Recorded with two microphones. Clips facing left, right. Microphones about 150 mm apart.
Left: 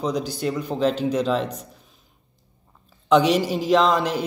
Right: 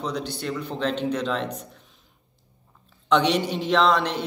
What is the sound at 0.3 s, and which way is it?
Speech, 5° left (ahead or behind).